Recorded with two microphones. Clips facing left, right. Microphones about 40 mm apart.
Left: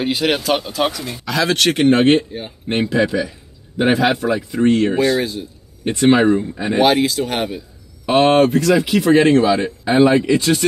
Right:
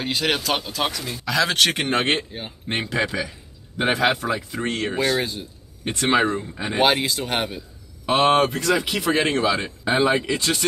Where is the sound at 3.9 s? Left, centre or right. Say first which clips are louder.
Left 4 dB; centre.